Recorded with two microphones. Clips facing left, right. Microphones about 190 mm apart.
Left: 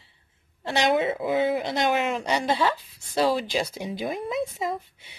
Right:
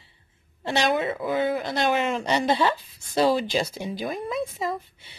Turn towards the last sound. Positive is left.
turn(degrees=20)  # may be behind; listen again after turning